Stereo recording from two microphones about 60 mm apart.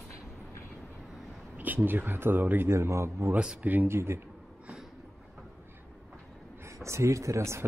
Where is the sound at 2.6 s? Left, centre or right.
Right.